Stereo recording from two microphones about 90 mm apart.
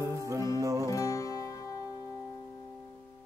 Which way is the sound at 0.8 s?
40° left (ahead or behind).